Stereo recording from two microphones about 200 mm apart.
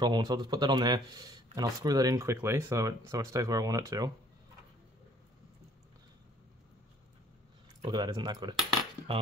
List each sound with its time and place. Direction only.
0.0 s speech: 20° right (ahead or behind)
7.8 s speech: 20° right (ahead or behind)